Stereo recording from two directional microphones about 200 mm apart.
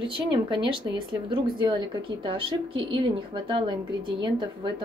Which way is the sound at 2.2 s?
25° right (ahead or behind).